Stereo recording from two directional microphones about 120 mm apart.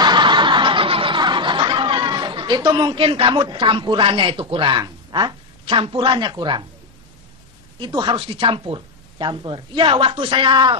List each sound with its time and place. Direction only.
0.0 s snicker: 40° right (ahead or behind)
7.8 s speech: 40° right (ahead or behind)